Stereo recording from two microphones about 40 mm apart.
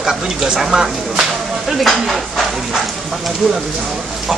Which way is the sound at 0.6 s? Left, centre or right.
Centre.